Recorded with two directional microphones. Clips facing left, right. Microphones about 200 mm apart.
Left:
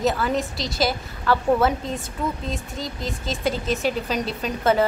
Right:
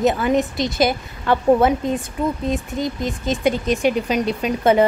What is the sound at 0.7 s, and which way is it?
A woman's voice, 20° right (ahead or behind).